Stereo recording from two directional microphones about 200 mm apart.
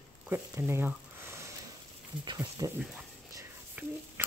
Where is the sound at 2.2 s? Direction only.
15° right (ahead or behind).